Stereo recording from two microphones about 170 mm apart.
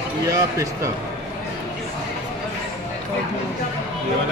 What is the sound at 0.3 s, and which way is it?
Speech, 20° right (ahead or behind).